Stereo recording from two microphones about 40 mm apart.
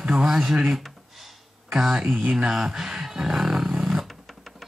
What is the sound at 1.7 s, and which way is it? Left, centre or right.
Speech, centre.